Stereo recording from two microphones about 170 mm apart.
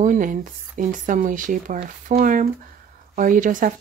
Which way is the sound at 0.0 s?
50° right (ahead or behind).